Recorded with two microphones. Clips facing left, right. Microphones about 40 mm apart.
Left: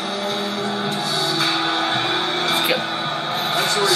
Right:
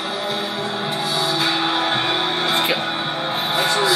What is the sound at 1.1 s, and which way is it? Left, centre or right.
Music, right.